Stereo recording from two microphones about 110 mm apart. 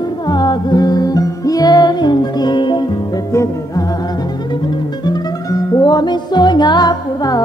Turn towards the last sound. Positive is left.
turn(degrees=35)  # may be behind; listen again after turning